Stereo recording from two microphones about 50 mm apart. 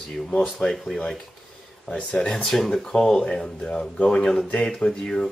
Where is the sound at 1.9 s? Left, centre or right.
Centre.